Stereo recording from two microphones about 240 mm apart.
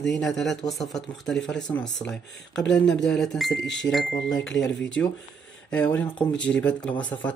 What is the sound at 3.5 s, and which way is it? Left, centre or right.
Speech, left.